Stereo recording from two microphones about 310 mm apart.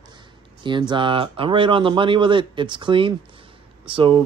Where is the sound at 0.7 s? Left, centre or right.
Centre.